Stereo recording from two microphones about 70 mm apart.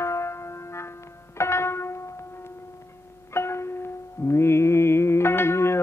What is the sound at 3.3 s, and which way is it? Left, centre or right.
Music, left.